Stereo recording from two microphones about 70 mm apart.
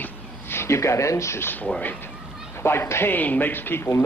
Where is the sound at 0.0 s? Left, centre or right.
Left.